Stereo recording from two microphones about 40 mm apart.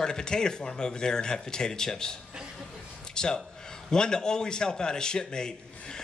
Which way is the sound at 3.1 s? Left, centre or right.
Centre.